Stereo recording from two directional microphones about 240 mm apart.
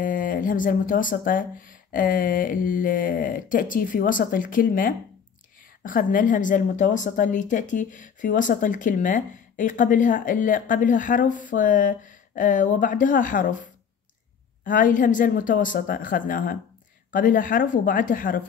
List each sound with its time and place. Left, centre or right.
0.0 s a woman's voice: left